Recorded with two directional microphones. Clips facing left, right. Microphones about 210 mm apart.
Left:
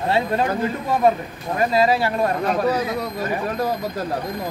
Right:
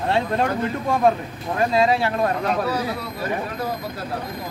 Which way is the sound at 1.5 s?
5° left (ahead or behind).